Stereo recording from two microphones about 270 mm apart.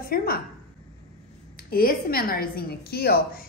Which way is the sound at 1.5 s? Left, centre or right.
Left.